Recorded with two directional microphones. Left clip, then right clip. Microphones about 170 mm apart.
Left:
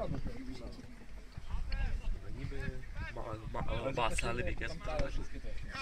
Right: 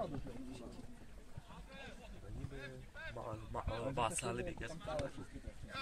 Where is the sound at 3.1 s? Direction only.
30° right (ahead or behind).